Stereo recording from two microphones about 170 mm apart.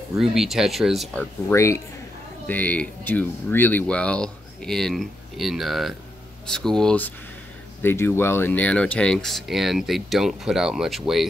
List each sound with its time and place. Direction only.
0.2 s speech: centre (ahead or behind)
1.5 s speech: 15° left (ahead or behind)
7.8 s speech: 15° left (ahead or behind)